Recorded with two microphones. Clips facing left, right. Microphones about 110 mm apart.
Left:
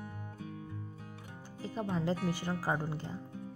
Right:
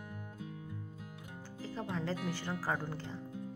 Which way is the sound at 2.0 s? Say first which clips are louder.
Left 4 dB; 15° left (ahead or behind).